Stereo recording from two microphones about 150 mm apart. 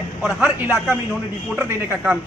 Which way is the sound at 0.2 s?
10° right (ahead or behind).